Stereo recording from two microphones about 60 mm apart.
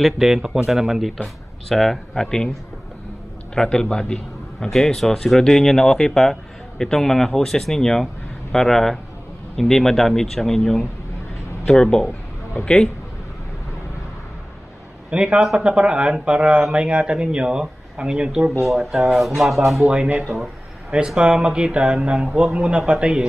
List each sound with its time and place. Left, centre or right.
0.0 s speech: centre
3.5 s a man's voice: centre
15.0 s speech: centre
19.1 s speech: centre
19.8 s a man's voice: right